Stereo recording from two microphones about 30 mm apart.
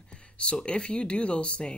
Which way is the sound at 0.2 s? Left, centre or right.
Left.